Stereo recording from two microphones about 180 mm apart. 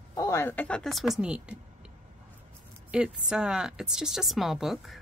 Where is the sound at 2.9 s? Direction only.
5° right (ahead or behind).